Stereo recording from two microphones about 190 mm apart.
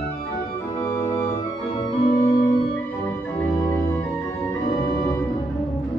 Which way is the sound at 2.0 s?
25° left (ahead or behind).